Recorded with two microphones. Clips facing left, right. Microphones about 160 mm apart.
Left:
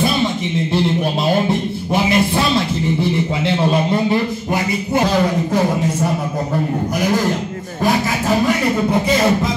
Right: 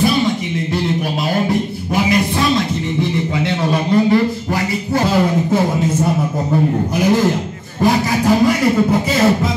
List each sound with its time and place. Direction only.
2.0 s a man's voice: 30° left (ahead or behind)
3.4 s a man's voice: 25° left (ahead or behind)